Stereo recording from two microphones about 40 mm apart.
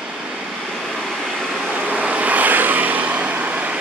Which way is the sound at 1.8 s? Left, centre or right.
Right.